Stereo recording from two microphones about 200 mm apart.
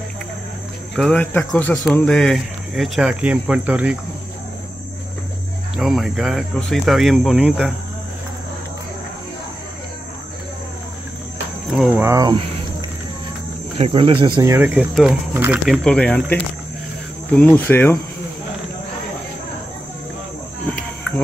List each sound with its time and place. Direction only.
0.9 s speech: 5° left (ahead or behind)
5.8 s speech: centre (ahead or behind)
11.7 s speech: 5° right (ahead or behind)
13.7 s speech: 30° right (ahead or behind)
14.5 s speech: 10° right (ahead or behind)
17.4 s cricket: 10° left (ahead or behind)